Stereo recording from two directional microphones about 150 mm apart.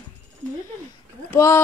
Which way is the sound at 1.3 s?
15° left (ahead or behind).